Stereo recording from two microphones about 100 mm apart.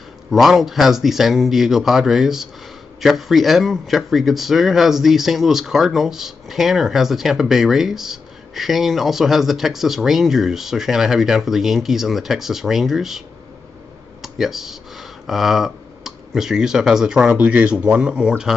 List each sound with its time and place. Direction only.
0.3 s speech: centre (ahead or behind)
14.2 s speech: 5° right (ahead or behind)